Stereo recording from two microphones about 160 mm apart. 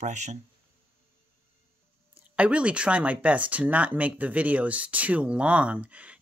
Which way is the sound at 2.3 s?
5° right (ahead or behind).